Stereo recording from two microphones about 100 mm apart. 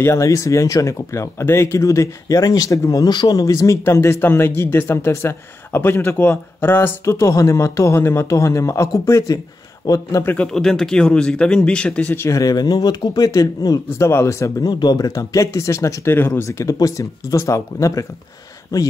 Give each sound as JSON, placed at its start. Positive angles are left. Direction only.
{"t": 0.0, "sound": "speech", "side_deg": 30}
{"t": 10.2, "sound": "speech", "side_deg": 10}
{"t": 12.1, "sound": "speech", "side_deg": 30}
{"t": 14.7, "sound": "speech", "side_deg": 45}
{"t": 16.4, "sound": "speech", "side_deg": 35}